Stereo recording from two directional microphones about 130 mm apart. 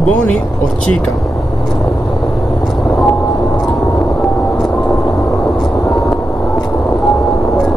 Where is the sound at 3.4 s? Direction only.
25° left (ahead or behind); by 5.3 s 5° left (ahead or behind).